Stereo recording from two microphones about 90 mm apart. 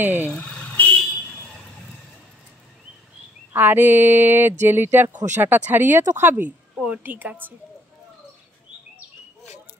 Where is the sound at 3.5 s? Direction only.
20° right (ahead or behind).